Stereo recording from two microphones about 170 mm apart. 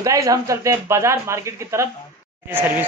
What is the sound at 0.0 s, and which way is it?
Speech, 20° right (ahead or behind).